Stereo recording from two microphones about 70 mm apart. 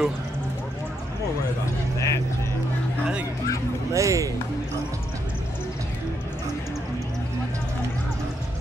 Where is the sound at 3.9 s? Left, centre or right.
Right.